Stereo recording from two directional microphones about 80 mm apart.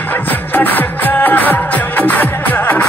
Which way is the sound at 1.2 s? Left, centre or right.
Left.